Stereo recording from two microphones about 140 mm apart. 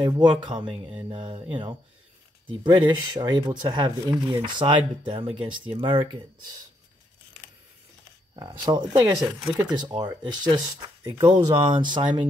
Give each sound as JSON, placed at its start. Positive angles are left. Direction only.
{"t": 0.0, "sound": "speech", "side_deg": -30}
{"t": 8.4, "sound": "speech", "side_deg": -30}